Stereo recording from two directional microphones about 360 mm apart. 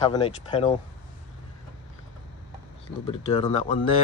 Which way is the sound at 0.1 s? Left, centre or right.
Centre.